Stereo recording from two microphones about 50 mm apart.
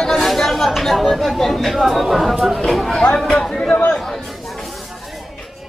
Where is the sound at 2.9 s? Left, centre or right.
Centre.